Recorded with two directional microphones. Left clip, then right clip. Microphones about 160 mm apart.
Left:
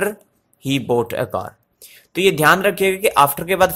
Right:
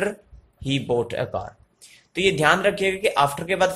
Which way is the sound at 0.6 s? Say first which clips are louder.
Left 5 dB; 40° left (ahead or behind).